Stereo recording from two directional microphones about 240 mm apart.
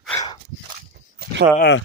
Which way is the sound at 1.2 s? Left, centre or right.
Right.